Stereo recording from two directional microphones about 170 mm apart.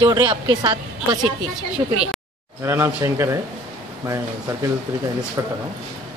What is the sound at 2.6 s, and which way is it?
A man's voice, 15° right (ahead or behind).